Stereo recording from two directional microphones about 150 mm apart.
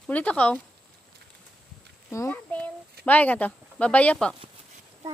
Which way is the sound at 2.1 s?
20° left (ahead or behind).